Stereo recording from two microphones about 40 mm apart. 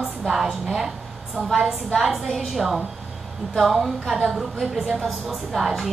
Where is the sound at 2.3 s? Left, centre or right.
Centre.